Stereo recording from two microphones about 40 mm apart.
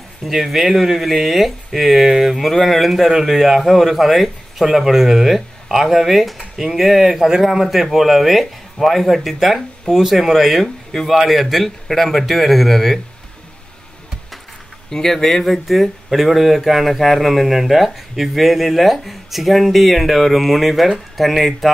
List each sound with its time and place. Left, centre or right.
0.2 s speech: centre
2.4 s speech: centre
14.9 s speech: centre